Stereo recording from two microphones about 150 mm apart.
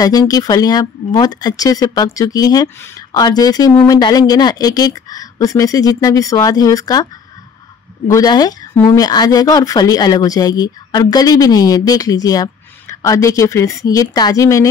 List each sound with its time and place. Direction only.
0.0 s speech: 25° left (ahead or behind)
8.1 s speech: 25° left (ahead or behind)